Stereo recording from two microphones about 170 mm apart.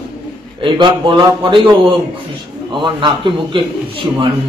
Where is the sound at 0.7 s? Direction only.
30° right (ahead or behind).